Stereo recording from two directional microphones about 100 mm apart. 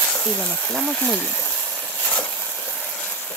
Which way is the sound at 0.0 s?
15° left (ahead or behind).